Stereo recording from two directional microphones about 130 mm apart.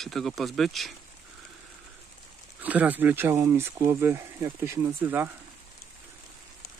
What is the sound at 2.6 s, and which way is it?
Speech, 10° right (ahead or behind).